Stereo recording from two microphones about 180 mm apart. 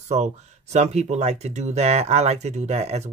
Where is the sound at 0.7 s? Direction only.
40° right (ahead or behind).